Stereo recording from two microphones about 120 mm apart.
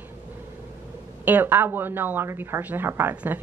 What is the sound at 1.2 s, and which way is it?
A woman's voice, 15° right (ahead or behind).